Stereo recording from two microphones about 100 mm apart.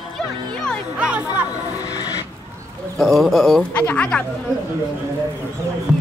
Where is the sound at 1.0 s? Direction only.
15° right (ahead or behind).